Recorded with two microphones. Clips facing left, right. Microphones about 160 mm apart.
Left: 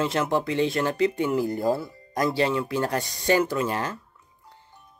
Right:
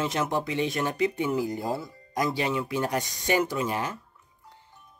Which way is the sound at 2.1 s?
15° right (ahead or behind).